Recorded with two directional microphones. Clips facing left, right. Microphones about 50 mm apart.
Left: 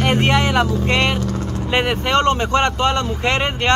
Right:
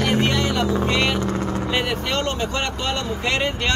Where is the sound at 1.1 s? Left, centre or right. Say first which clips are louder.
Right 1 dB; centre.